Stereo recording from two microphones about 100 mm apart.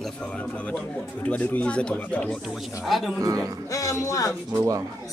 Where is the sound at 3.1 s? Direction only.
35° right (ahead or behind).